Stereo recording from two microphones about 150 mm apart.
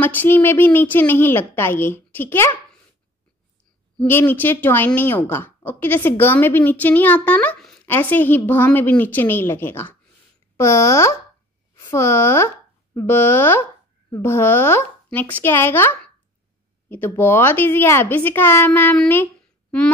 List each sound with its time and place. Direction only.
0.0 s a woman's voice: 15° left (ahead or behind)
4.0 s a woman's voice: 15° left (ahead or behind)